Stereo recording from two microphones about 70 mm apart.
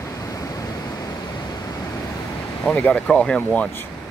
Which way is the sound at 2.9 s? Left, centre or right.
Centre.